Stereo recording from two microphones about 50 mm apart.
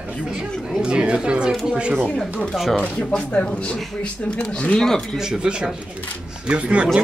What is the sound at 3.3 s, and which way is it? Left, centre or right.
Speech, left.